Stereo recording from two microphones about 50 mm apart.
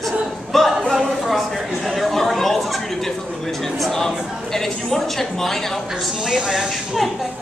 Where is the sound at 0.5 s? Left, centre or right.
Centre.